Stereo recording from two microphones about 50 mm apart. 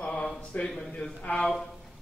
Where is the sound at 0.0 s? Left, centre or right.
Left.